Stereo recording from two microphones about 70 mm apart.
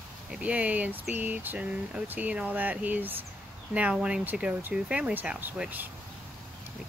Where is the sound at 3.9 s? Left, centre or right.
Centre.